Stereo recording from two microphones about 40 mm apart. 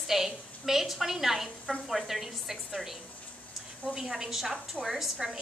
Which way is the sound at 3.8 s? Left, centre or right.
Centre.